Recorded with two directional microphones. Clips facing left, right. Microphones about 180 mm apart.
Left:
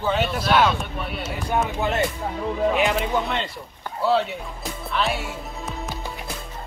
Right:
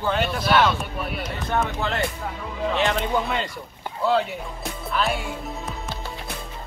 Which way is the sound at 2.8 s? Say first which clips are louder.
Left 1 dB; 5° left (ahead or behind).